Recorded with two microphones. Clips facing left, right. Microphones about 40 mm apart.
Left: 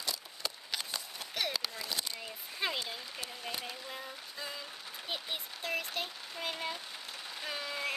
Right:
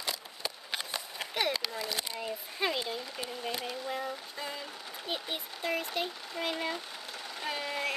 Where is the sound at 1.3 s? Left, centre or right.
Right.